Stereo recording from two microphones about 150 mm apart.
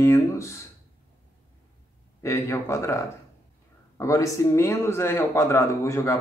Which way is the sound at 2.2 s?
20° left (ahead or behind).